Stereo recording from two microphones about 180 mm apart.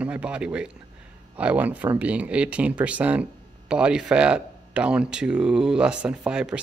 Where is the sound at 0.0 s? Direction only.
5° right (ahead or behind).